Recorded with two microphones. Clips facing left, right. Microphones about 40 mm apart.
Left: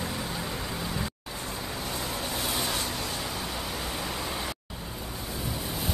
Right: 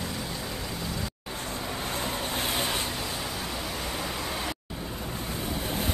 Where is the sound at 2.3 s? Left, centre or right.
Right.